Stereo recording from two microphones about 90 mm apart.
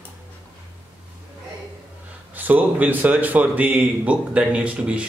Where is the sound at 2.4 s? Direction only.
20° right (ahead or behind).